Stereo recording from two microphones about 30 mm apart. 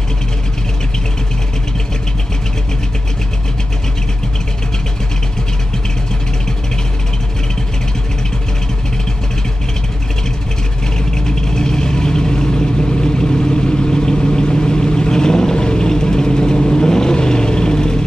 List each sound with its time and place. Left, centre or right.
11.1 s vehicle: left